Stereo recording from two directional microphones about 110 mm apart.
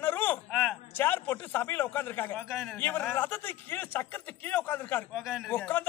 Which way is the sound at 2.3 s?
5° left (ahead or behind).